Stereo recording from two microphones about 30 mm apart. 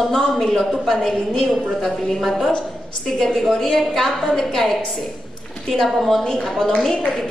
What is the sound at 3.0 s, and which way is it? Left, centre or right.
A woman's voice, centre.